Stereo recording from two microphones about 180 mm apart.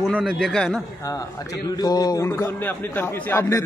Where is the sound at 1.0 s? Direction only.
20° left (ahead or behind).